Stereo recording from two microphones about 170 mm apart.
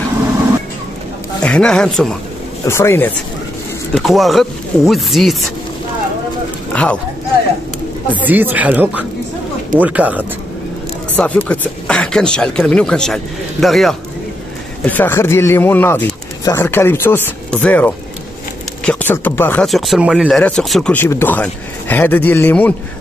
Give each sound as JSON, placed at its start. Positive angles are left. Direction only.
{"t": 1.4, "sound": "speech", "side_deg": 5}
{"t": 2.6, "sound": "speech", "side_deg": 15}
{"t": 3.9, "sound": "speech", "side_deg": 0}
{"t": 6.7, "sound": "a sound", "side_deg": 5}
{"t": 8.1, "sound": "speech", "side_deg": -10}
{"t": 11.1, "sound": "speech", "side_deg": 10}
{"t": 14.9, "sound": "speech", "side_deg": 10}